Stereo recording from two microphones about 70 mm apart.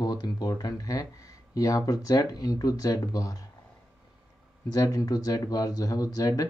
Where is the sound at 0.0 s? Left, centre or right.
Left.